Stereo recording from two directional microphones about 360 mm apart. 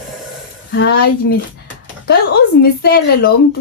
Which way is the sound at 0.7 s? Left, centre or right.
Left.